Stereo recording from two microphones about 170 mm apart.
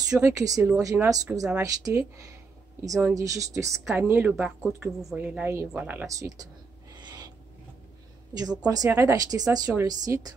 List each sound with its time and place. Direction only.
0.1 s speech: 20° right (ahead or behind)
0.6 s speech: 5° right (ahead or behind)
1.1 s speech: 20° right (ahead or behind)
3.8 s speech: centre (ahead or behind); by 6.5 s 20° right (ahead or behind)
8.4 s speech: 20° right (ahead or behind)